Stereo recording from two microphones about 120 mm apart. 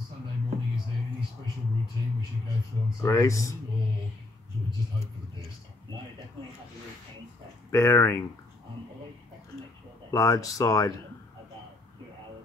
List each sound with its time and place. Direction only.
3.0 s speech: 25° left (ahead or behind)
7.7 s speech: 25° left (ahead or behind)
10.1 s speech: 30° left (ahead or behind)